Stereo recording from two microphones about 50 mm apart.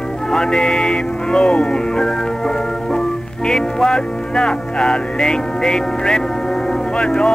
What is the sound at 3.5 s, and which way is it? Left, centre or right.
Music, centre.